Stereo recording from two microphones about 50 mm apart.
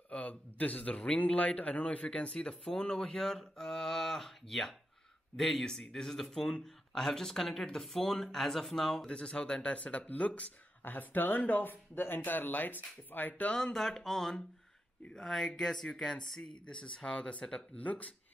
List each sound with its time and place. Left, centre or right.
0.1 s a man's voice: left; by 9.1 s centre
9.1 s speech: centre
10.8 s speech: left
13.3 s speech: left
13.7 s a man's voice: centre; by 18.1 s left